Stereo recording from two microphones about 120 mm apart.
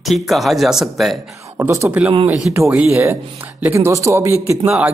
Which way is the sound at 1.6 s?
25° right (ahead or behind).